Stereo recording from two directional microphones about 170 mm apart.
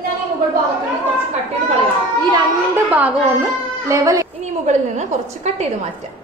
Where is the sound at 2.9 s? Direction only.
10° right (ahead or behind).